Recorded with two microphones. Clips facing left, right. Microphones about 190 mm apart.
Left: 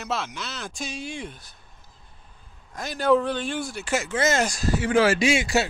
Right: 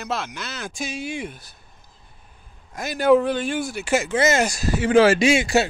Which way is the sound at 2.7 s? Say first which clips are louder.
Right 4 dB; 10° right (ahead or behind).